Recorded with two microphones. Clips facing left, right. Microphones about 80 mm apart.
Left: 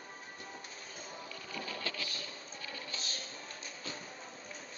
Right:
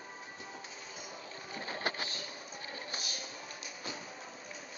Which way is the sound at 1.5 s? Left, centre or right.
Right.